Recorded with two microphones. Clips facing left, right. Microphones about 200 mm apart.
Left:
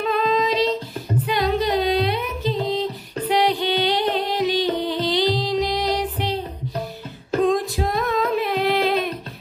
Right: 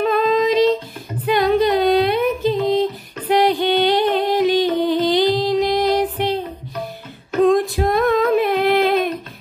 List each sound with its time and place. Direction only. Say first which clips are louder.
0.0 s female singing: right 4 dB; 50° right (ahead or behind)
1.2 s music: right 7 dB; 55° right (ahead or behind)
7.4 s singing: right 6 dB; 55° right (ahead or behind)